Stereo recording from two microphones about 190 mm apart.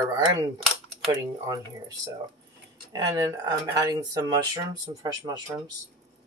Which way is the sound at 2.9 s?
20° right (ahead or behind).